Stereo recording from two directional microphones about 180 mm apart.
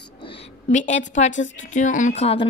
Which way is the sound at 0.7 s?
40° left (ahead or behind).